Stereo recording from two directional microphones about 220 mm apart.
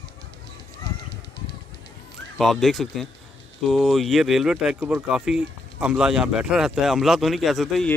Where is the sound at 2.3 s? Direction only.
Centre (ahead or behind).